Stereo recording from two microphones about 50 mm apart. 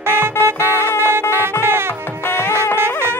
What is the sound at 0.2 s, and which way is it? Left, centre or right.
Music, right.